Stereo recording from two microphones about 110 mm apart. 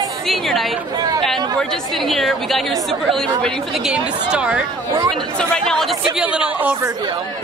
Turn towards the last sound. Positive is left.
turn(degrees=-15)  # may be behind; listen again after turning